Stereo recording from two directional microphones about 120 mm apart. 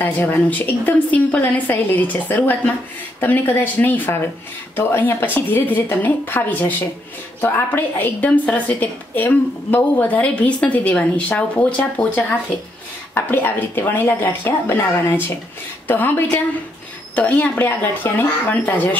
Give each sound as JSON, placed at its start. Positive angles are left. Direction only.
{"t": 0.0, "sound": "a woman's voice", "side_deg": 15}